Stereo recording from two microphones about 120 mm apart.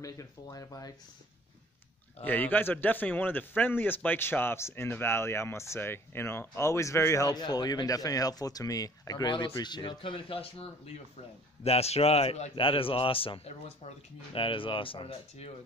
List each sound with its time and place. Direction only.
0.0 s a man's voice: 30° left (ahead or behind)
2.2 s a man's voice: 15° left (ahead or behind); by 15.5 s 55° left (ahead or behind)